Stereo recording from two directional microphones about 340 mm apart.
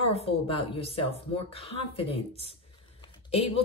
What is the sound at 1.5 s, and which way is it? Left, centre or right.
Speech, centre.